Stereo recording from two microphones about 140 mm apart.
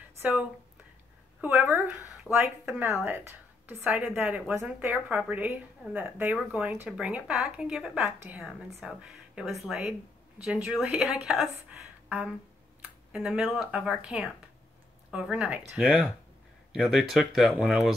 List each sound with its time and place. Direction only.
0.2 s a woman's voice: 10° right (ahead or behind)
2.3 s speech: 5° left (ahead or behind)
2.8 s a woman's voice: 15° right (ahead or behind)